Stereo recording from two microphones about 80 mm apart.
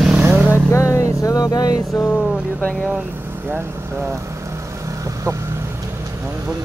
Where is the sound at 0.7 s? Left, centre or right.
Left.